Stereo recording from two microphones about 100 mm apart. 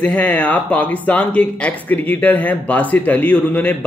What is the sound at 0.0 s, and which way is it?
Speech, 15° left (ahead or behind).